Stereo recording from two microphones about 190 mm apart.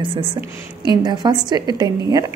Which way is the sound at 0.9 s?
20° right (ahead or behind).